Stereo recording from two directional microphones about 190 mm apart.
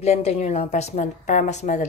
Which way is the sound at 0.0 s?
35° left (ahead or behind).